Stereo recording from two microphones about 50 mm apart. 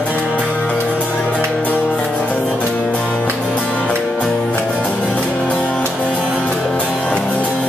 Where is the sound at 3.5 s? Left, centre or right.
Left.